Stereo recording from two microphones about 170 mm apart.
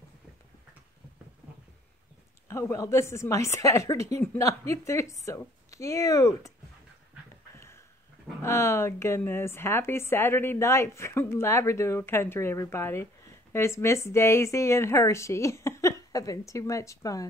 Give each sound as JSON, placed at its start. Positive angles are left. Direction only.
{"t": 2.4, "sound": "a woman's voice", "side_deg": 15}
{"t": 7.5, "sound": "a sound", "side_deg": 15}
{"t": 8.4, "sound": "a woman's voice", "side_deg": 15}